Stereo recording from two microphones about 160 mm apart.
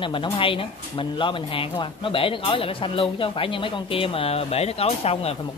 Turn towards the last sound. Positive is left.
turn(degrees=40)  # may be behind; listen again after turning